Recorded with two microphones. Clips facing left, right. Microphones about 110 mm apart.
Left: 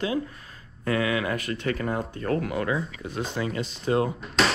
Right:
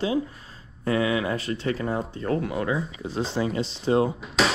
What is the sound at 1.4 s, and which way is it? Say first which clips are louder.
Speech: right 2 dB; 55° left (ahead or behind).